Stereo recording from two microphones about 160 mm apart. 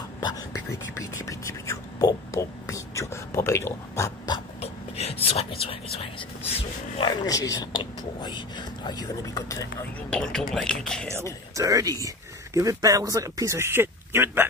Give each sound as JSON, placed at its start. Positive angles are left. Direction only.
{"t": 0.2, "sound": "speech", "side_deg": 20}
{"t": 4.6, "sound": "speech", "side_deg": 40}
{"t": 9.9, "sound": "speech", "side_deg": 5}
{"t": 11.5, "sound": "speech", "side_deg": -20}